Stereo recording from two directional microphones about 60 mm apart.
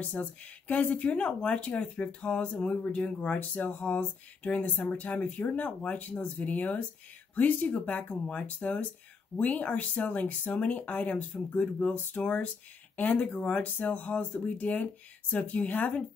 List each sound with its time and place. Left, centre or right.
0.0 s speech: left
3.3 s speech: left